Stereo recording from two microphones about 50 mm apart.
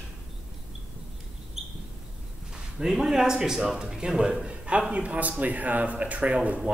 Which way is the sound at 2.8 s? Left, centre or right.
Centre.